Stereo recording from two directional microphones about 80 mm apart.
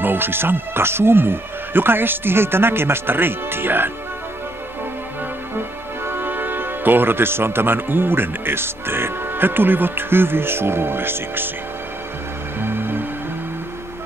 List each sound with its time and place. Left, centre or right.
0.0 s speech: right
6.0 s speech: right
12.5 s music: right